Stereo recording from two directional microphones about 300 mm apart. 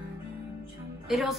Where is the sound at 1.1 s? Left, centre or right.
Centre.